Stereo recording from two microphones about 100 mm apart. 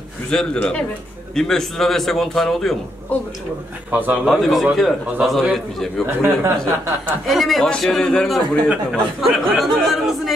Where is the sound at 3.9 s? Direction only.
15° right (ahead or behind).